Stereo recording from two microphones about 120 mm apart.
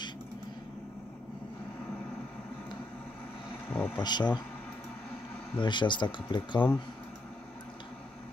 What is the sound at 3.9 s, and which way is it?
Speech, 35° left (ahead or behind).